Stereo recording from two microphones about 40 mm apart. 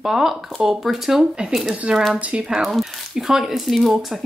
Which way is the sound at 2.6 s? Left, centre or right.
Centre.